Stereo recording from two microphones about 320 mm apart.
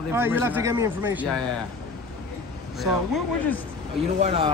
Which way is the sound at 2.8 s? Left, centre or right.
Centre.